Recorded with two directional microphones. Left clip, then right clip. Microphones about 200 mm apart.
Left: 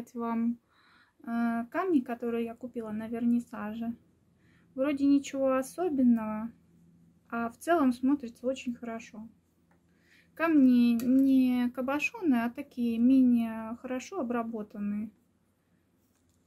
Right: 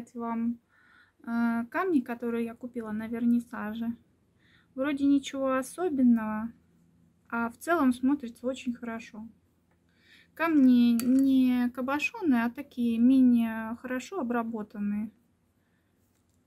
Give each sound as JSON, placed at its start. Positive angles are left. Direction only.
{"t": 0.0, "sound": "speech", "side_deg": 5}
{"t": 0.8, "sound": "speech", "side_deg": -10}